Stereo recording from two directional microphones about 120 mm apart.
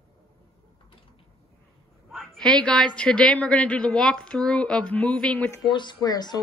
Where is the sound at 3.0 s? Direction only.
10° left (ahead or behind).